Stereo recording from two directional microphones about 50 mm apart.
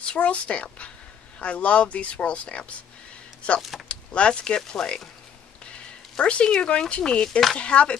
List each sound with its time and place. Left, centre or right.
0.0 s speech: left
3.9 s speech: left